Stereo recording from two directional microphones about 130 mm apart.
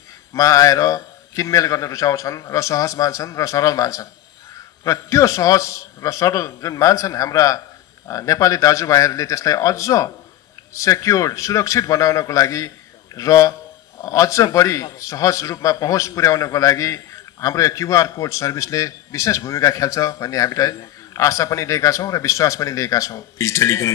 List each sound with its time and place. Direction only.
0.3 s a man's voice: 25° left (ahead or behind)